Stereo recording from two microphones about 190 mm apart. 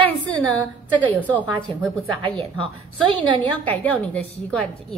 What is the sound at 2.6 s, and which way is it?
Speech, 25° right (ahead or behind).